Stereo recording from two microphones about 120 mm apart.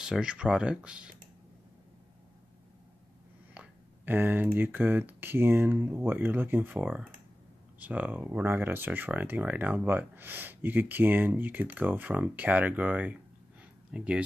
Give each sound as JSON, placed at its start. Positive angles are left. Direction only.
{"t": 0.0, "sound": "speech", "side_deg": -5}
{"t": 3.5, "sound": "speech", "side_deg": -15}